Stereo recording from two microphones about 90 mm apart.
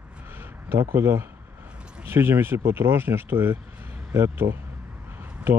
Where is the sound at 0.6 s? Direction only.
25° right (ahead or behind).